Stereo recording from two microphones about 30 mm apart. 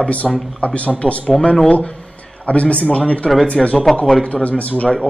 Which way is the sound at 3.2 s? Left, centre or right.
Left.